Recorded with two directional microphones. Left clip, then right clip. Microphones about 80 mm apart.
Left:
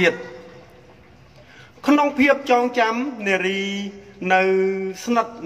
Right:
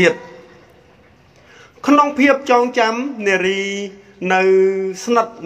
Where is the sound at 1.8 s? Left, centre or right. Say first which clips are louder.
Right 4 dB; right.